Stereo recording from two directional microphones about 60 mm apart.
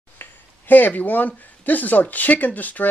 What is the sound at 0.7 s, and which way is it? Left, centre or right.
Speech, left.